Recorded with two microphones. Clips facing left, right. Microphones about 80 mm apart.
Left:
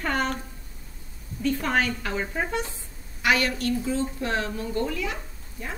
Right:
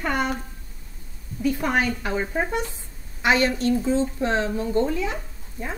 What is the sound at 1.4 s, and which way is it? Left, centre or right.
A woman's voice, centre.